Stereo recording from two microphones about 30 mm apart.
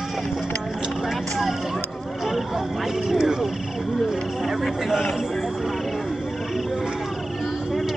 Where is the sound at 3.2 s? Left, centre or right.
Centre.